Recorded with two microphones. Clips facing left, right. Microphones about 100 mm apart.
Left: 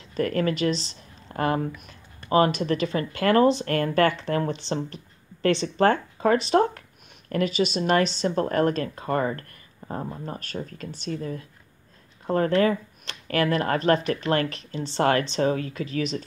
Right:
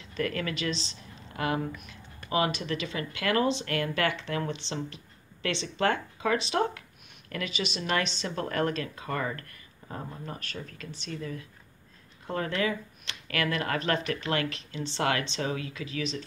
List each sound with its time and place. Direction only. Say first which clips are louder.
0.1 s speech: left 7 dB; 40° left (ahead or behind)